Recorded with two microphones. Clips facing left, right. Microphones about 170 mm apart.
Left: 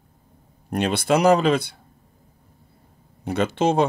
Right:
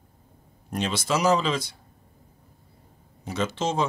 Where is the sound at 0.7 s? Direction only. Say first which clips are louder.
Left 6 dB; 60° left (ahead or behind).